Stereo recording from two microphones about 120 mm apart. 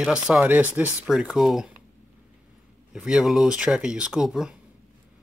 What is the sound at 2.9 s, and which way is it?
Speech, 5° right (ahead or behind).